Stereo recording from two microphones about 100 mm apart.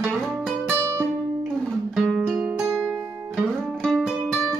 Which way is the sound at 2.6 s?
25° right (ahead or behind).